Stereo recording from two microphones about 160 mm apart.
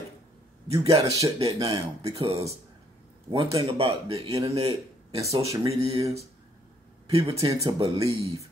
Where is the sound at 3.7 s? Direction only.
40° right (ahead or behind).